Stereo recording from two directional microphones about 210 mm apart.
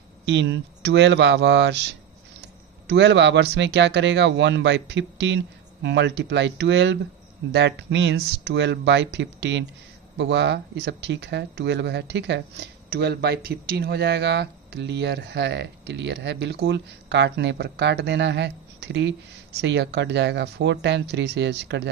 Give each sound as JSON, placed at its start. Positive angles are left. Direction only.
{"t": 0.2, "sound": "speech", "side_deg": -55}